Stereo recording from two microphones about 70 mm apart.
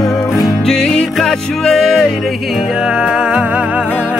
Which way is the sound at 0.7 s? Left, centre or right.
Centre.